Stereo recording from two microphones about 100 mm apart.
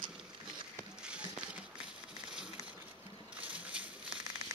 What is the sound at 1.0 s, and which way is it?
Music, 10° right (ahead or behind).